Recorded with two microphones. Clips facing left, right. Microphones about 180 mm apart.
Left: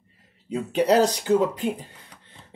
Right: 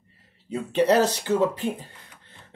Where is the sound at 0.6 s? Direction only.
15° left (ahead or behind).